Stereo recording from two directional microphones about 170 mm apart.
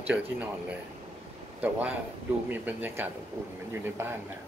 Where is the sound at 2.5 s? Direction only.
10° right (ahead or behind).